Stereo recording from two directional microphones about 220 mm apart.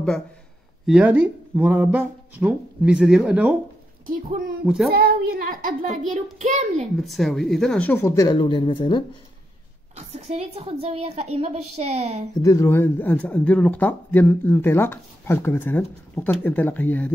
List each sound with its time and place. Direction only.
0.8 s speech: 5° right (ahead or behind)
4.9 s a child's voice: 45° right (ahead or behind)
7.0 s speech: centre (ahead or behind); by 9.0 s 20° left (ahead or behind)
9.9 s a woman's voice: 30° right (ahead or behind)
12.4 s speech: 15° left (ahead or behind)